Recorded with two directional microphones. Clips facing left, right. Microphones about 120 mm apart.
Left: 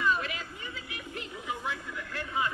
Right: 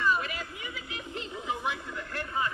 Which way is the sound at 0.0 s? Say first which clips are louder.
Right 1 dB; 5° right (ahead or behind).